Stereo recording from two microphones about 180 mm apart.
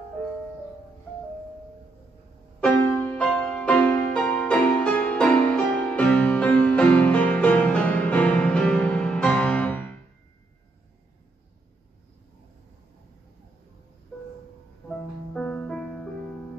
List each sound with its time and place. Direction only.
2.6 s music: 10° left (ahead or behind)
14.9 s music: 5° left (ahead or behind)